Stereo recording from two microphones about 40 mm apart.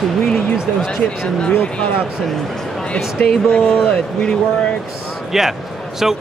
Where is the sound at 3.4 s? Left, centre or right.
Left.